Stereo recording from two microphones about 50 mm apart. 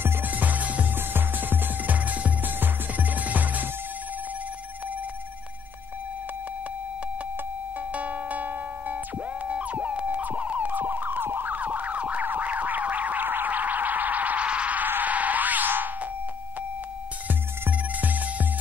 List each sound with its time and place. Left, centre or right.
0.0 s music: right
0.3 s music: right
0.9 s music: right
2.0 s music: right
7.9 s music: right
9.5 s a sound: right
14.9 s music: right
17.3 s music: right